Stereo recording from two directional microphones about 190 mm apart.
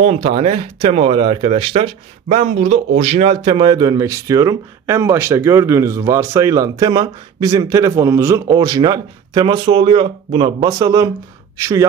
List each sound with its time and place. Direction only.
0.0 s speech: 30° right (ahead or behind); by 11.8 s 15° right (ahead or behind)